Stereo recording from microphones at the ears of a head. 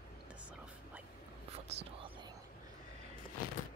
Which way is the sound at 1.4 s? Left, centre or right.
Right.